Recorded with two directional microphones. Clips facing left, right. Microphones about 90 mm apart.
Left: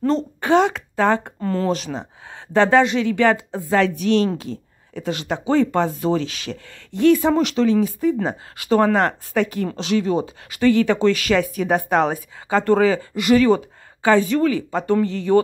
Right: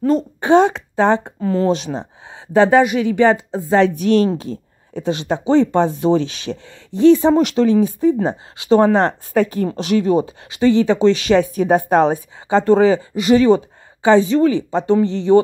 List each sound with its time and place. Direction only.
0.4 s speech: 30° right (ahead or behind)
1.4 s speech: 5° right (ahead or behind)
2.2 s speech: 15° right (ahead or behind)
3.9 s speech: 40° right (ahead or behind)
6.7 s speech: 20° right (ahead or behind); by 10.2 s 35° right (ahead or behind)
10.5 s speech: 25° right (ahead or behind)